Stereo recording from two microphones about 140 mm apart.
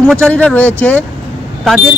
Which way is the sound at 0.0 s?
10° left (ahead or behind).